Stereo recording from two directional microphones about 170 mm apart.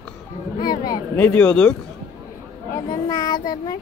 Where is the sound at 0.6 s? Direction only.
25° left (ahead or behind).